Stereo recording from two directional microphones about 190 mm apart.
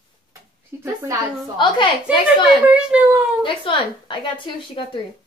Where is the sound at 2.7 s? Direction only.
5° right (ahead or behind).